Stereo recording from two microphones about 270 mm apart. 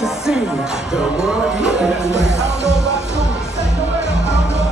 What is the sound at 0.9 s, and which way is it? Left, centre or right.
Speech, centre.